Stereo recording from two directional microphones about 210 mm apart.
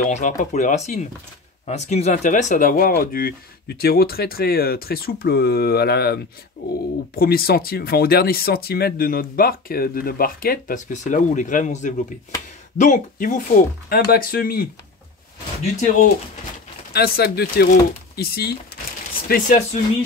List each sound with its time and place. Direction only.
0.0 s speech: 35° left (ahead or behind)
16.9 s speech: 50° left (ahead or behind)